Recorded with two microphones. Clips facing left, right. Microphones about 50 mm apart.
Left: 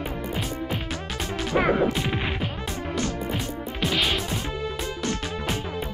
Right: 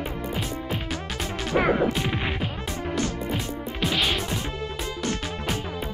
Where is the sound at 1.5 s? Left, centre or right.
Centre.